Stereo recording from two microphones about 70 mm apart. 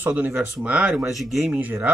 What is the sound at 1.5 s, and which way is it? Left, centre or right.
Speech, right.